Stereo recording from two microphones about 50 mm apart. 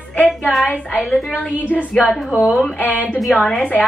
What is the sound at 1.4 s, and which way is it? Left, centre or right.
Speech, left.